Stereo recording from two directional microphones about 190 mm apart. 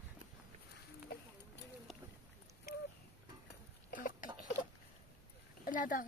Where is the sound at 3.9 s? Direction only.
45° left (ahead or behind).